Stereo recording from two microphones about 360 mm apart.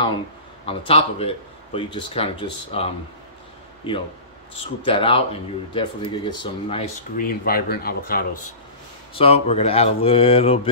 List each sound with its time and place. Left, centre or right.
0.7 s a man's voice: centre
4.8 s a man's voice: centre